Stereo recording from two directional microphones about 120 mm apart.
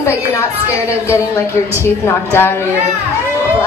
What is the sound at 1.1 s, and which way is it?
A woman's voice, 20° left (ahead or behind).